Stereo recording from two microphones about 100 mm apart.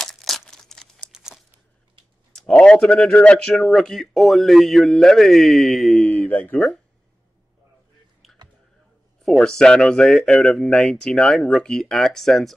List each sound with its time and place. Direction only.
0.0 s crumpling: centre (ahead or behind)
1.1 s crumpling: 5° right (ahead or behind)
2.3 s a man's voice: 10° left (ahead or behind)
6.2 s speech: 20° left (ahead or behind)
6.5 s a man's voice: 5° left (ahead or behind)
9.2 s a man's voice: 5° left (ahead or behind)